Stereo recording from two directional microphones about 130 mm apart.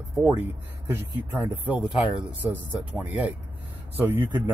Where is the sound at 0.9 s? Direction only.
15° right (ahead or behind).